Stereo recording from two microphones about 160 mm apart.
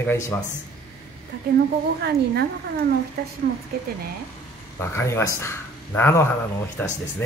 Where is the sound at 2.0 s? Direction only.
90° right.